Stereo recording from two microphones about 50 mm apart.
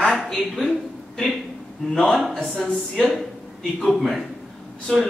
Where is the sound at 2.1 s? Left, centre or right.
Centre.